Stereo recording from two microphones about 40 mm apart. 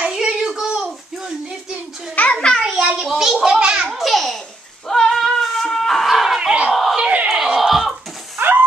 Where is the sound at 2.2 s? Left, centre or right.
Left.